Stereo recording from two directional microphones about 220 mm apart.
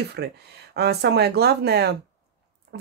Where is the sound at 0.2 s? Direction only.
50° right (ahead or behind).